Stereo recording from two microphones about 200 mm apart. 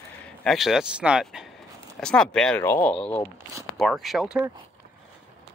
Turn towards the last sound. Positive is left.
turn(degrees=-5)  # may be behind; listen again after turning